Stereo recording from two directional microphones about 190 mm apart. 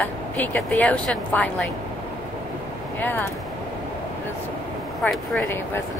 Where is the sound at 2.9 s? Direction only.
10° left (ahead or behind).